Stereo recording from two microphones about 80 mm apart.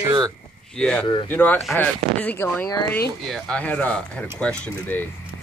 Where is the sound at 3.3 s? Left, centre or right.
Centre.